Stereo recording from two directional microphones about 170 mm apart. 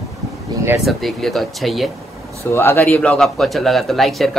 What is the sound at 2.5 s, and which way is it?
A man's voice, 15° left (ahead or behind).